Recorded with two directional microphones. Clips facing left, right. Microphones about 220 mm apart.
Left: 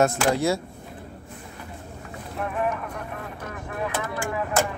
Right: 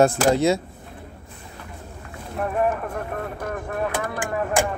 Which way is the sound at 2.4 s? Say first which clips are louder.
Right 4 dB; 45° right (ahead or behind).